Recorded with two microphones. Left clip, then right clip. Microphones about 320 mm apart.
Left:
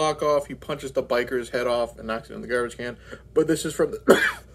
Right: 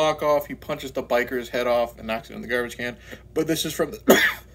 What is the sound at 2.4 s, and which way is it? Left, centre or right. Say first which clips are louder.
Speech: even; right.